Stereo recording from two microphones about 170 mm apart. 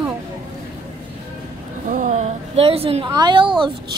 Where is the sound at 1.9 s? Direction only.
45° right (ahead or behind).